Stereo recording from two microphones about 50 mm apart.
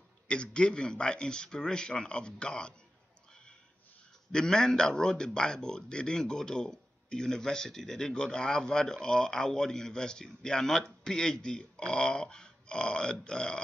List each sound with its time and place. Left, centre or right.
0.3 s a man's voice: centre
4.3 s speech: centre